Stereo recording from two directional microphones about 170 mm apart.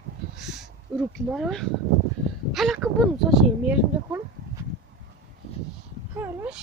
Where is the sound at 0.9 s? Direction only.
5° right (ahead or behind).